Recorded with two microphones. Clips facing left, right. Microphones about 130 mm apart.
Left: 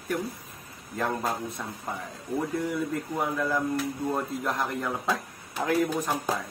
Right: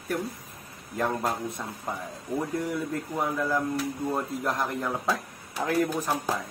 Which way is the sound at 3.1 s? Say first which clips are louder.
Right 1 dB; 5° right (ahead or behind).